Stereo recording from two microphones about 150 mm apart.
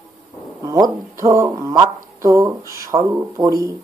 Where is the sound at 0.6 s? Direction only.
25° right (ahead or behind).